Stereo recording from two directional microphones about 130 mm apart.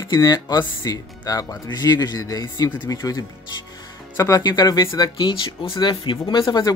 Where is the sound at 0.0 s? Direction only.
25° left (ahead or behind).